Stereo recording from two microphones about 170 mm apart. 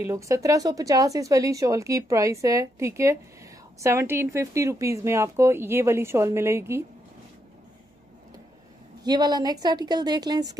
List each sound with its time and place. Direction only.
0.0 s speech: 15° right (ahead or behind)
9.0 s a woman's voice: 25° right (ahead or behind)